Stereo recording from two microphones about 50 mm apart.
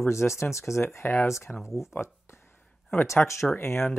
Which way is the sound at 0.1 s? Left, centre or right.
Left.